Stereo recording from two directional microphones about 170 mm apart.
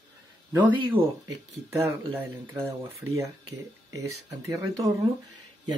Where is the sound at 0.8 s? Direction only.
25° right (ahead or behind).